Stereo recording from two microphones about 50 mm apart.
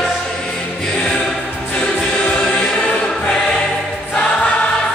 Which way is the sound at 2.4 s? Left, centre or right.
Centre.